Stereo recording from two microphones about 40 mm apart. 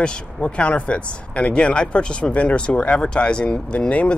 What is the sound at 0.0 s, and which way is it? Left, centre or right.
Speech, left.